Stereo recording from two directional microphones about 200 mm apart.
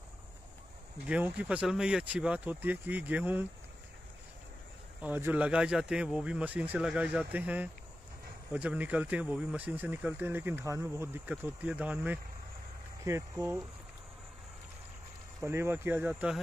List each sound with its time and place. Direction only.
1.0 s speech: 5° right (ahead or behind)
5.0 s speech: 10° right (ahead or behind)
15.4 s speech: 10° right (ahead or behind)